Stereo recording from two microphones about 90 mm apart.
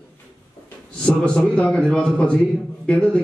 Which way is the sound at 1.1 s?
10° left (ahead or behind).